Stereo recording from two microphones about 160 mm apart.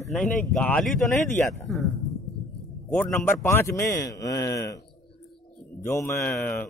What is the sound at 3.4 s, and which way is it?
Speech, 20° left (ahead or behind).